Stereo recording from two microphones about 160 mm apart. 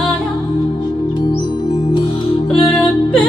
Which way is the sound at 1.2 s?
30° left (ahead or behind).